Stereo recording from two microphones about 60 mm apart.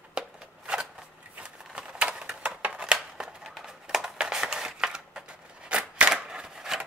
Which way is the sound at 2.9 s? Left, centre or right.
Centre.